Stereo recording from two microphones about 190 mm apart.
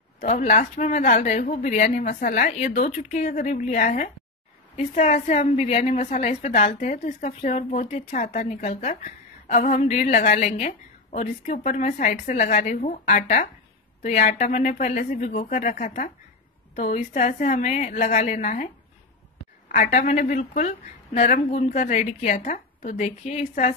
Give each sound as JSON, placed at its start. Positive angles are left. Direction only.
{"t": 0.2, "sound": "a woman's voice", "side_deg": 40}
{"t": 19.7, "sound": "a woman's voice", "side_deg": 40}